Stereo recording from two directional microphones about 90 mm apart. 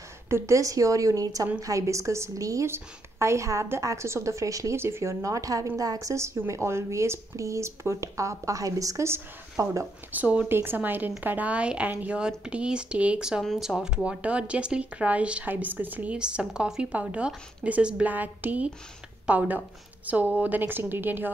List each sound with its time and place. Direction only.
0.3 s a woman's voice: 35° right (ahead or behind)
10.1 s a woman's voice: 15° right (ahead or behind)